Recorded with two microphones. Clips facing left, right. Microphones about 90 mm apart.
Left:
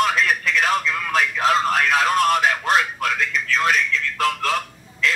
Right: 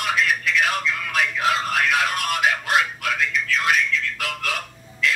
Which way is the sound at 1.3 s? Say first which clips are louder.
Left 4 dB; 35° left (ahead or behind).